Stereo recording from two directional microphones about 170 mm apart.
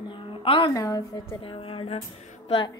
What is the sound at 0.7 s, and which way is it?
Speech, 20° left (ahead or behind).